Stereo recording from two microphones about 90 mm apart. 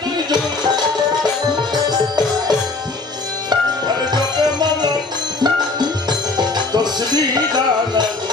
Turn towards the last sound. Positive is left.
turn(degrees=-50)  # may be behind; listen again after turning